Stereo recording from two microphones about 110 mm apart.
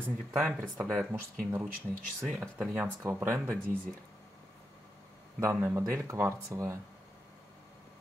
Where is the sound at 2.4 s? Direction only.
15° right (ahead or behind).